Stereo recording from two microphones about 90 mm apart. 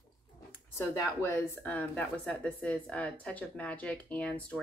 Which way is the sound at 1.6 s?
15° left (ahead or behind).